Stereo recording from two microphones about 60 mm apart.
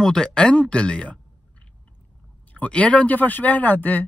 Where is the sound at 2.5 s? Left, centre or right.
Left.